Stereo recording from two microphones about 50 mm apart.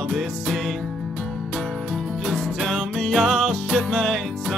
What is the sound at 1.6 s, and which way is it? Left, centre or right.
Music, centre.